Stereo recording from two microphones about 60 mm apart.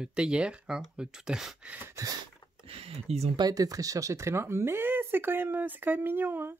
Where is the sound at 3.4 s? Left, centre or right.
Right.